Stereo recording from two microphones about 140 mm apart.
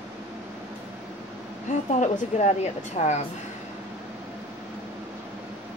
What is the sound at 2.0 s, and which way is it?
Speech, 60° left (ahead or behind).